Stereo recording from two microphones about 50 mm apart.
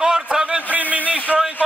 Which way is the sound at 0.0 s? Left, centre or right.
Centre.